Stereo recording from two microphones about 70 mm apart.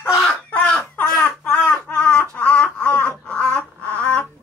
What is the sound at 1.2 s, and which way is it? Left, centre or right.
Baby cry, centre.